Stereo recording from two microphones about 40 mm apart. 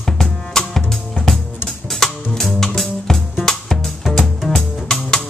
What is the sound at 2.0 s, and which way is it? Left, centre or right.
Music, centre.